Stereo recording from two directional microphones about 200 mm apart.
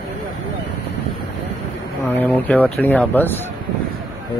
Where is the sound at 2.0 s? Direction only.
10° left (ahead or behind).